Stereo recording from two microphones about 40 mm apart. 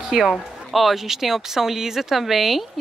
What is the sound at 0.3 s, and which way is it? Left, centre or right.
Speech, centre.